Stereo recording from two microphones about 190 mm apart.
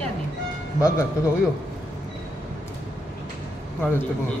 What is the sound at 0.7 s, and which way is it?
Speech, 15° left (ahead or behind).